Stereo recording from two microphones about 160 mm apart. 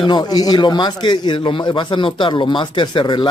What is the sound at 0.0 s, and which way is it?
A man's voice, 25° left (ahead or behind).